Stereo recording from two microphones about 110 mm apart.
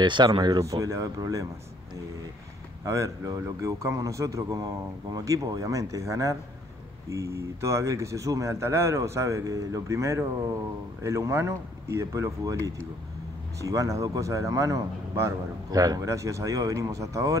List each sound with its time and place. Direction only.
0.0 s speech: 45° right (ahead or behind)
0.4 s speech: 35° right (ahead or behind)
2.8 s speech: 30° right (ahead or behind)